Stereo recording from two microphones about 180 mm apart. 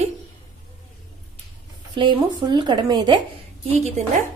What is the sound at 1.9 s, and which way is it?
Speech, 25° right (ahead or behind).